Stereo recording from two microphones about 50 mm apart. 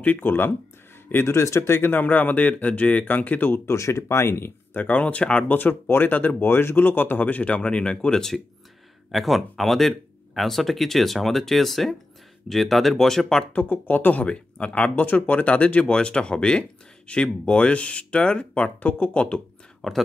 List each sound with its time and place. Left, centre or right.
0.0 s speech: left
1.2 s speech: left
1.8 s speech: left
3.6 s speech: left
4.7 s speech: left
5.5 s speech: left; by 8.4 s centre
9.1 s speech: centre
13.5 s speech: left
19.8 s speech: centre